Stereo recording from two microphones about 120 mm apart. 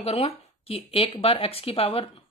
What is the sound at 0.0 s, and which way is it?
Speech, 55° left (ahead or behind).